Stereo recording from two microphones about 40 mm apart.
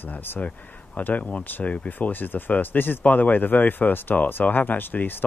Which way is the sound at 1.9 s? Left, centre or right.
Left.